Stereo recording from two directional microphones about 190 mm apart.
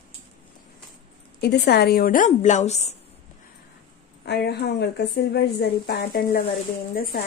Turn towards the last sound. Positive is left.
turn(degrees=50)  # may be behind; listen again after turning